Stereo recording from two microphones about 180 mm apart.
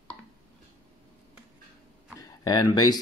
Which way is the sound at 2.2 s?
20° left (ahead or behind).